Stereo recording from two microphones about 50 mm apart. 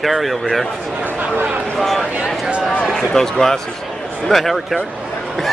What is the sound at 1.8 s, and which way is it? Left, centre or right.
Speech, centre.